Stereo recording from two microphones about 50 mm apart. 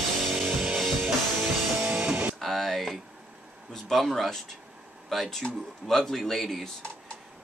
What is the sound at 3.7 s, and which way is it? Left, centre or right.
Speech, centre.